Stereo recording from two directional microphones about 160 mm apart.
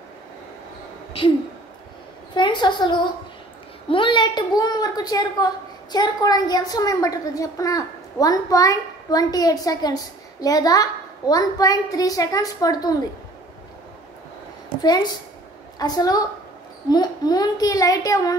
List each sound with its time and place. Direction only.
2.3 s a woman's voice: 30° left (ahead or behind)
15.8 s a woman's voice: 25° left (ahead or behind)